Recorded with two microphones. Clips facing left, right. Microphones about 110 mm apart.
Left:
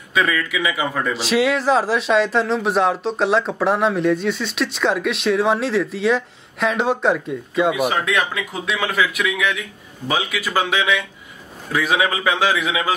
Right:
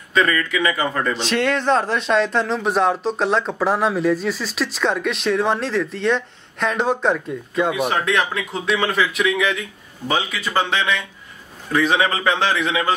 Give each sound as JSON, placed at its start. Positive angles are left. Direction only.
{"t": 0.1, "sound": "a man's voice", "side_deg": 5}